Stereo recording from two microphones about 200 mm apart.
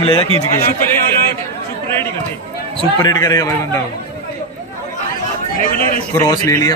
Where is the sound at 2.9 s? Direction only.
20° left (ahead or behind).